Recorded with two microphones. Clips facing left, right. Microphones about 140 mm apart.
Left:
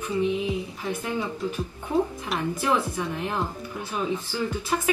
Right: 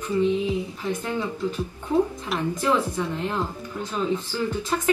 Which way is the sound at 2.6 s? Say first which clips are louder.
Right 3 dB; 15° left (ahead or behind).